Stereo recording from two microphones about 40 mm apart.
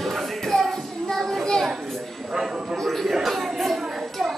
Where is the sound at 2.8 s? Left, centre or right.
Centre.